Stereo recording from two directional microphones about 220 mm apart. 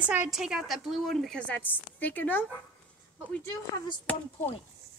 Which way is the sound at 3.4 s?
10° left (ahead or behind).